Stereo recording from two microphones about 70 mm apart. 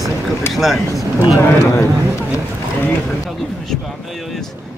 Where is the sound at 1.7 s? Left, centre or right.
Left.